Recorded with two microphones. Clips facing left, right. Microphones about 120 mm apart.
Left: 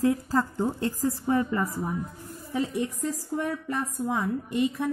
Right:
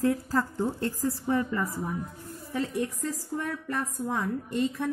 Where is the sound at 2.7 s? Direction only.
15° left (ahead or behind).